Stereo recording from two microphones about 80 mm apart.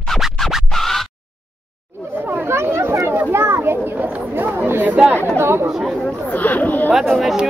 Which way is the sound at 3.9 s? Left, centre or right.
Right.